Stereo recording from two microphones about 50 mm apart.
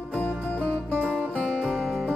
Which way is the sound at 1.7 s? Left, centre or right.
Centre.